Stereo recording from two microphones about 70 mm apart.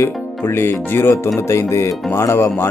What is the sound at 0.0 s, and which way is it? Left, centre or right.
Speech, left.